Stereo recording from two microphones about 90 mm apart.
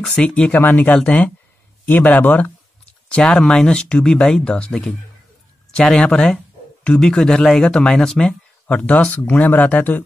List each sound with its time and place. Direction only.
0.1 s speech: 10° left (ahead or behind)